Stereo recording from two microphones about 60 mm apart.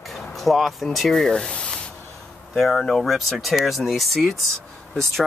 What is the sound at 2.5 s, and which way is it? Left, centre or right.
Speech, centre.